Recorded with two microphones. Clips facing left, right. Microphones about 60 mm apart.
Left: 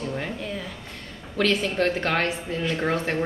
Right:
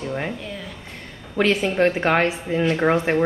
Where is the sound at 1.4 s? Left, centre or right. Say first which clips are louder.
Right 4 dB; right.